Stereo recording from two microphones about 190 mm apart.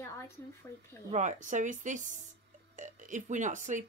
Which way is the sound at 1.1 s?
40° right (ahead or behind).